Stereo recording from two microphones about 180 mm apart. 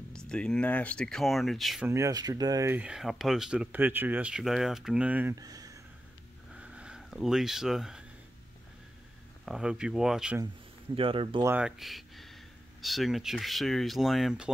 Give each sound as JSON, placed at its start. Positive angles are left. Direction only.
{"t": 0.1, "sound": "speech", "side_deg": 5}
{"t": 1.9, "sound": "speech", "side_deg": -15}
{"t": 5.3, "sound": "a sound", "side_deg": -20}
{"t": 6.6, "sound": "a sound", "side_deg": -5}
{"t": 9.5, "sound": "speech", "side_deg": -5}
{"t": 11.0, "sound": "speech", "side_deg": -30}
{"t": 11.4, "sound": "speech", "side_deg": -5}